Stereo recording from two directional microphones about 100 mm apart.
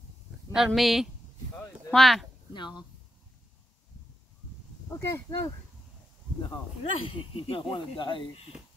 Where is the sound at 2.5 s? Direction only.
50° left (ahead or behind).